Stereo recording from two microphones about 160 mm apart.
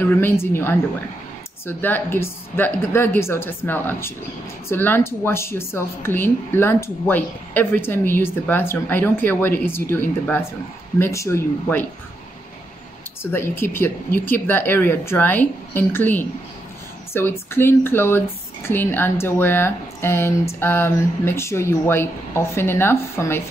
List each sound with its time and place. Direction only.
0.0 s a woman's voice: 10° left (ahead or behind)
13.2 s a woman's voice: 15° left (ahead or behind)